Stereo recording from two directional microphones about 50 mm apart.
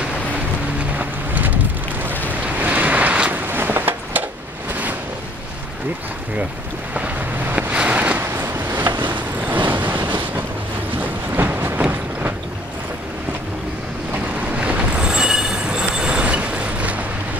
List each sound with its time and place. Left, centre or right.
0.9 s vehicle: right
2.4 s waves: right
3.3 s a sound: right
6.9 s boat: right
7.7 s a sound: right
8.3 s vehicle: right
11.0 s a sound: right
11.9 s vehicle: right
14.5 s train: right
15.0 s train: centre